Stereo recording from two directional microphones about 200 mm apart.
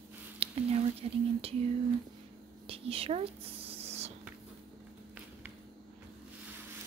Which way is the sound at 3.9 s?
30° right (ahead or behind).